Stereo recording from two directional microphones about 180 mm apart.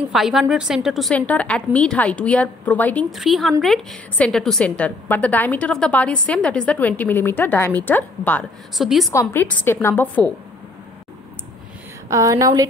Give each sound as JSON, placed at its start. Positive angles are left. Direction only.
{"t": 0.1, "sound": "a woman's voice", "side_deg": 0}
{"t": 9.1, "sound": "a woman's voice", "side_deg": 15}
{"t": 12.1, "sound": "a woman's voice", "side_deg": -15}